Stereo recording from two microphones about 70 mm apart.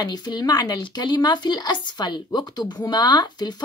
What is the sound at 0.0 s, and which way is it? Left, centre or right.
Speech, left.